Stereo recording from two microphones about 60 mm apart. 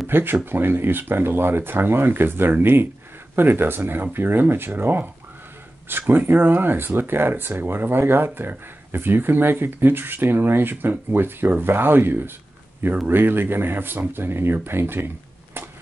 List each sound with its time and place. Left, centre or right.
0.1 s speech: right